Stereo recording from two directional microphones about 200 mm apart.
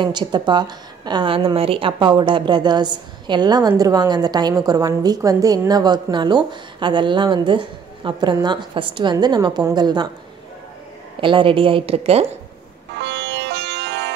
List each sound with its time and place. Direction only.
0.0 s a woman's voice: 20° right (ahead or behind)
11.1 s a woman's voice: 25° right (ahead or behind)
13.0 s music: 60° right (ahead or behind)